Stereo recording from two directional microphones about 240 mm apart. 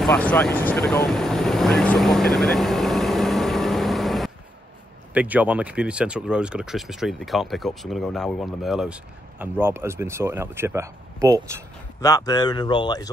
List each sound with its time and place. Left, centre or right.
0.0 s vehicle: centre
5.1 s speech: centre
12.0 s speech: centre